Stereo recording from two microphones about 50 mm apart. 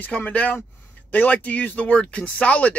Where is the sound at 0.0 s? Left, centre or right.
Left.